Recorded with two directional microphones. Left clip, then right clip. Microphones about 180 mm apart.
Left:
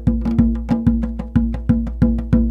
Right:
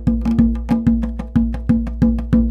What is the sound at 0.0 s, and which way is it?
Music, 50° left (ahead or behind).